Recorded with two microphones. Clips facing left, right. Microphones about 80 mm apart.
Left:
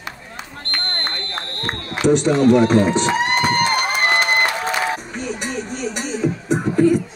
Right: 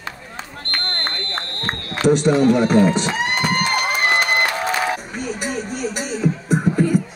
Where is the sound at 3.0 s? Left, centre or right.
Left.